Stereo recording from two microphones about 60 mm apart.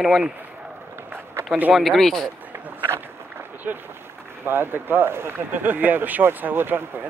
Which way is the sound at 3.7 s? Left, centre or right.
Right.